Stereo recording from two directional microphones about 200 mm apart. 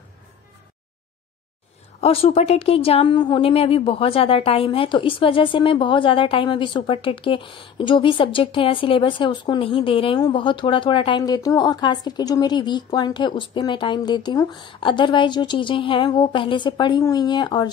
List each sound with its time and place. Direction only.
2.0 s a woman's voice: 30° left (ahead or behind)